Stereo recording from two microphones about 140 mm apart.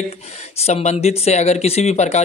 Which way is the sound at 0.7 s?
50° left (ahead or behind).